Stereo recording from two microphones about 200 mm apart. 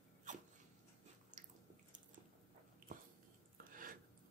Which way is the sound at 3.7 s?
45° right (ahead or behind).